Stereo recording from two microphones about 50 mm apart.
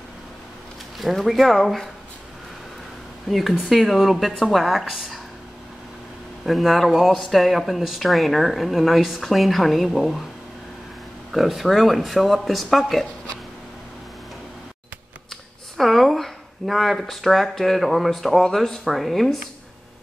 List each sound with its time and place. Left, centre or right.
0.9 s speech: centre
3.3 s speech: centre
6.4 s speech: centre
11.3 s speech: centre
15.8 s speech: centre